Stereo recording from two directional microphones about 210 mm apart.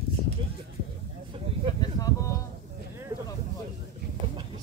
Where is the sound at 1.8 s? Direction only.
15° left (ahead or behind).